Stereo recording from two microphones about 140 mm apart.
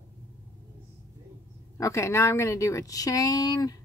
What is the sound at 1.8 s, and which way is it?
Speech, 20° left (ahead or behind).